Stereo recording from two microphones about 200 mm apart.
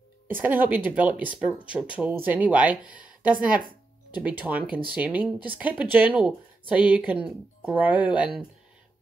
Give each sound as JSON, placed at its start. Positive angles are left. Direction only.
{"t": 0.4, "sound": "speech", "side_deg": -10}
{"t": 3.0, "sound": "a sound", "side_deg": -45}
{"t": 4.1, "sound": "speech", "side_deg": -10}